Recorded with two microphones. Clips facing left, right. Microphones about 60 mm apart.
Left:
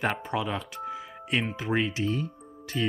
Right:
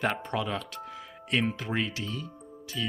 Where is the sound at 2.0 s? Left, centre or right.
Left.